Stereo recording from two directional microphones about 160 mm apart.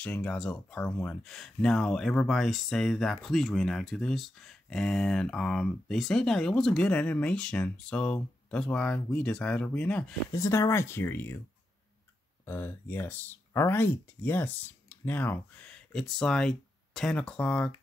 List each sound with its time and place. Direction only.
0.0 s speech: 5° left (ahead or behind)
10.3 s speech: 20° left (ahead or behind)
12.4 s speech: 10° left (ahead or behind)